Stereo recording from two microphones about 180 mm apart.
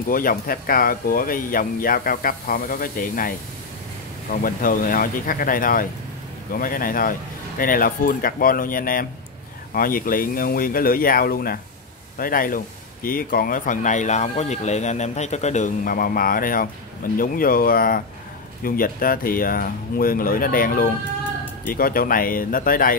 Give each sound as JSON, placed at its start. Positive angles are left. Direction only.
{"t": 0.1, "sound": "speech", "side_deg": 50}